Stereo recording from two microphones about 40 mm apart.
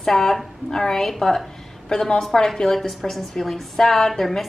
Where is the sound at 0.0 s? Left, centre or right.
Centre.